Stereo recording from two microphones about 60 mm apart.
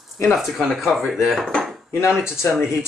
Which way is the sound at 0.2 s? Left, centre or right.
Centre.